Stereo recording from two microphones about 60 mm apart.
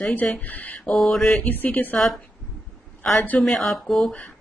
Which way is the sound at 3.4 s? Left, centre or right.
Centre.